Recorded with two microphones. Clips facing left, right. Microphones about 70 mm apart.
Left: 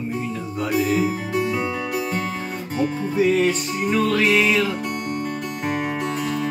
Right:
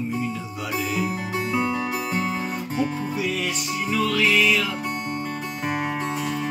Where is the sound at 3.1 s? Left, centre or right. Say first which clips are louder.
Left 8 dB; left.